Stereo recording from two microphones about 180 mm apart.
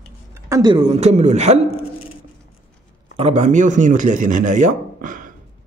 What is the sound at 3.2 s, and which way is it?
Speech, 40° right (ahead or behind).